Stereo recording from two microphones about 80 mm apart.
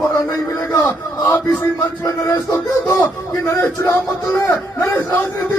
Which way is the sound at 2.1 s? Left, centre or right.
Left.